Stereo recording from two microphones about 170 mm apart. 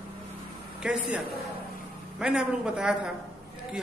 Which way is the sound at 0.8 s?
5° right (ahead or behind).